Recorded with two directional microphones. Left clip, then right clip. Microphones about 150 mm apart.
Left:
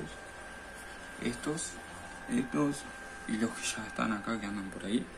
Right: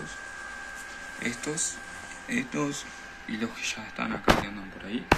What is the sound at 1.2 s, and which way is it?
Speech, 5° left (ahead or behind).